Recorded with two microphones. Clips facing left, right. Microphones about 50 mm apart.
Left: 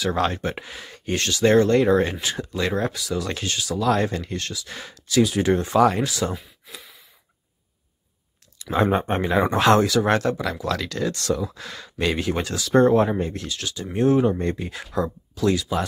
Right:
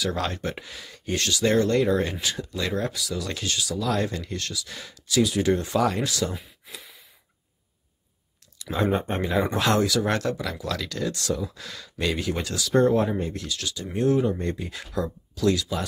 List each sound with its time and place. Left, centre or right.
0.0 s speech: left
6.0 s speech: left
6.3 s a sound: centre
8.9 s speech: left
12.8 s speech: left